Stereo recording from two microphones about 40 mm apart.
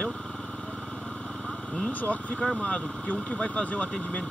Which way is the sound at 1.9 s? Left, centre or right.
Left.